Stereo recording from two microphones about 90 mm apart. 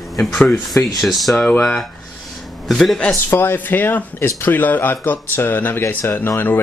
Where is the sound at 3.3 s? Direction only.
25° left (ahead or behind).